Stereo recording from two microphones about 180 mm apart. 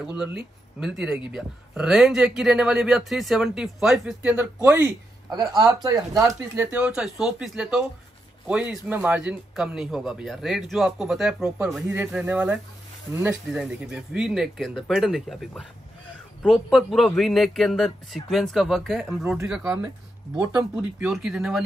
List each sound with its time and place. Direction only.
0.0 s speech: 5° right (ahead or behind)
21.0 s speech: 5° right (ahead or behind)